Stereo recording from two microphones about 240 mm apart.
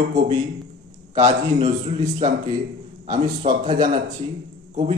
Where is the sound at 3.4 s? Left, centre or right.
Right.